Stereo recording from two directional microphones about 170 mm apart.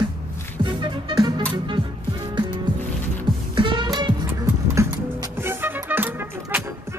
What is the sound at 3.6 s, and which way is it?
Music, 30° right (ahead or behind).